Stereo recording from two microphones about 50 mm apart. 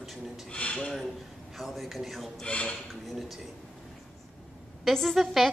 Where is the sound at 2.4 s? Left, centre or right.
Left.